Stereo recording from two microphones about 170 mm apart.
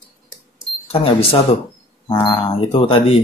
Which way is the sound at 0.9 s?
35° left (ahead or behind).